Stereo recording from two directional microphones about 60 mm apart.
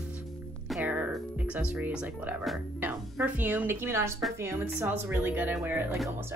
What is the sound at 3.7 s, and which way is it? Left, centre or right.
Speech, right.